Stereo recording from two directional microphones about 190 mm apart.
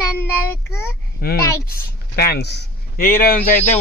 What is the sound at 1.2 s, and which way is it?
Speech, 55° left (ahead or behind).